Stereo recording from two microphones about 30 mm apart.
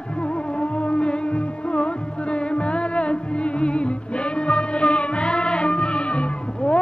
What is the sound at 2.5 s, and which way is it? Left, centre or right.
Music, left.